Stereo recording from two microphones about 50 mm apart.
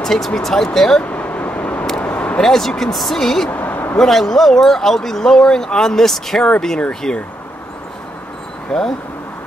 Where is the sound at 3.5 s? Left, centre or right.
Left.